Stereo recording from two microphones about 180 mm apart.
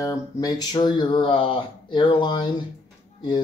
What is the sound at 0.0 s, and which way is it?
Speech, 20° left (ahead or behind).